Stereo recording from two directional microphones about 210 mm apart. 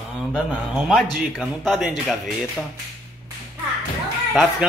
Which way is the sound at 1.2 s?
Centre (ahead or behind).